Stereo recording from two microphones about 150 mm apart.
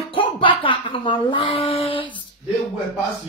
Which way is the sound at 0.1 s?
35° left (ahead or behind).